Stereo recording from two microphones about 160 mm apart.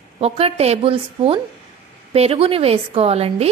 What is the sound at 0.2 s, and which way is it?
A woman's voice, 40° right (ahead or behind).